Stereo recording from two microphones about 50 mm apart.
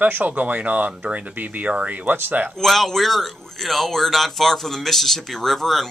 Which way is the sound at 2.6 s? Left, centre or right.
Centre.